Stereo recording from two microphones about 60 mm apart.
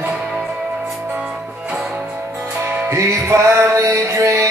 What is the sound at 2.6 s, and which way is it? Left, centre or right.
Music, right.